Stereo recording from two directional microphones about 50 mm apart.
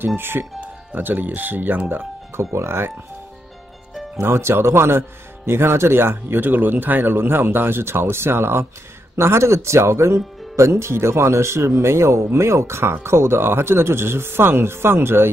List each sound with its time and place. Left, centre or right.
0.2 s speech: right
0.6 s speech: right
2.5 s speech: right
4.2 s speech: right
12.3 s speech: right